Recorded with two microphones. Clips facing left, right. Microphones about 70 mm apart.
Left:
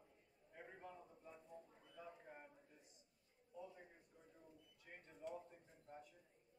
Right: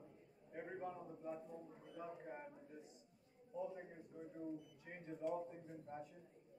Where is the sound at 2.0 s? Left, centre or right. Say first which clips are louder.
Right 7 dB; right.